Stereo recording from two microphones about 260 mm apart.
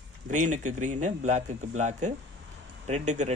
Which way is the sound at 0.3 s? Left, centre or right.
Right.